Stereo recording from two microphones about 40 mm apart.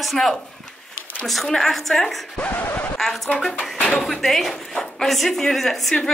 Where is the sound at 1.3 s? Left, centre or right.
Centre.